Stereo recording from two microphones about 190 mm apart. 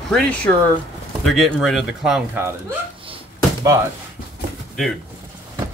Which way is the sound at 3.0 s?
30° right (ahead or behind).